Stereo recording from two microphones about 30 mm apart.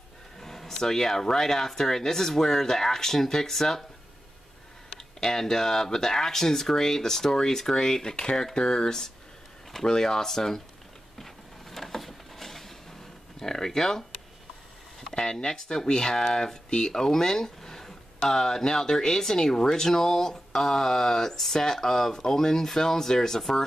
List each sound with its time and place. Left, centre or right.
0.4 s speech: centre
4.9 s speech: centre
11.1 s a sound: centre
13.4 s speech: centre
15.1 s speech: left